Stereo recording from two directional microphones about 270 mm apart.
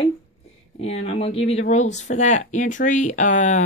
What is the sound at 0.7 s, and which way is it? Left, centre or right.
Speech, left.